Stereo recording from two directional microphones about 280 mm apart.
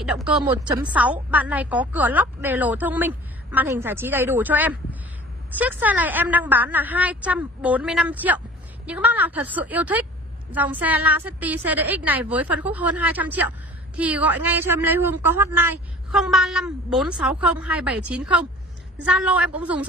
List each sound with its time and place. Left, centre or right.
0.0 s a woman's voice: centre
0.4 s a woman's voice: centre
0.8 s a woman's voice: centre